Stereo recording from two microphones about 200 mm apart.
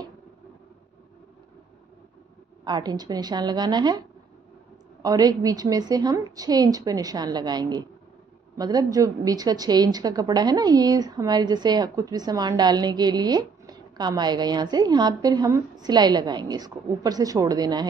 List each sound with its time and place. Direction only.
2.6 s a woman's voice: 20° right (ahead or behind)
5.0 s a woman's voice: 20° right (ahead or behind)